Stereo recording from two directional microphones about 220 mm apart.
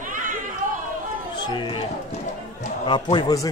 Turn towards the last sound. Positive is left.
turn(degrees=20)  # may be behind; listen again after turning